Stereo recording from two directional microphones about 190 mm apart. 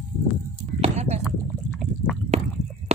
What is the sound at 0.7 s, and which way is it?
Clip-clop, 35° right (ahead or behind).